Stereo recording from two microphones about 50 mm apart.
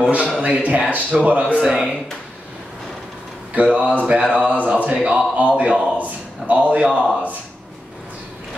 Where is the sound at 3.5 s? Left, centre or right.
Right.